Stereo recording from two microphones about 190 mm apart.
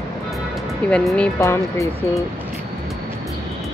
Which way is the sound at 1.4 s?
15° left (ahead or behind).